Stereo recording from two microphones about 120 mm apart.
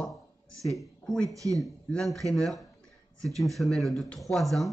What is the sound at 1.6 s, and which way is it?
Speech, 5° left (ahead or behind).